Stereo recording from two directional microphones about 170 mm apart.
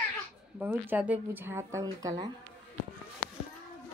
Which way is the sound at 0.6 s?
10° right (ahead or behind).